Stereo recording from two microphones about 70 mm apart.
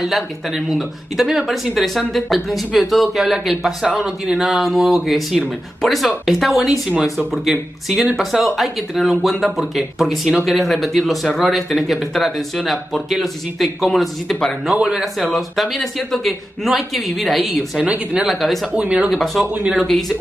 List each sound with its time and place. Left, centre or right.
0.0 s speech: centre
6.9 s speech: right
7.4 s speech: centre
17.7 s speech: centre
18.2 s speech: centre
18.8 s speech: centre
19.0 s speech: centre